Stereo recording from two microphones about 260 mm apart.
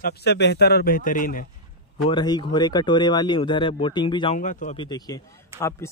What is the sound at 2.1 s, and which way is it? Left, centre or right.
Speech, centre.